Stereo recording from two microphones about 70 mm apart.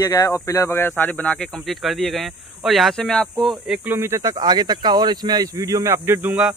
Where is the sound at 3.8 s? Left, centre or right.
Right.